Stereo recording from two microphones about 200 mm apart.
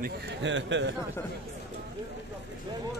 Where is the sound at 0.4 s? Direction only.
65° right (ahead or behind).